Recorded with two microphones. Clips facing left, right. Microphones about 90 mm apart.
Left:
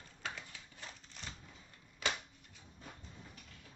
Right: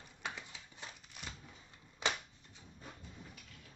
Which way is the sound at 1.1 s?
10° right (ahead or behind).